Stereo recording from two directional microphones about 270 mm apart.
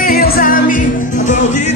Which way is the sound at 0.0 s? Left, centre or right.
Left.